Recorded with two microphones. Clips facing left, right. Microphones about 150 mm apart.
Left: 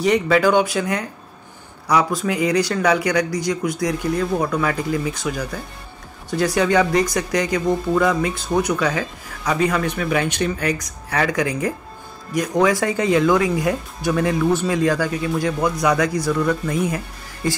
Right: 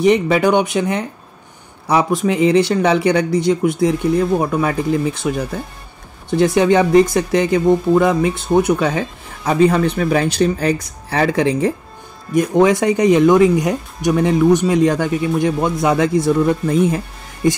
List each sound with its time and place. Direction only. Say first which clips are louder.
0.0 s speech: right 3 dB; 20° right (ahead or behind)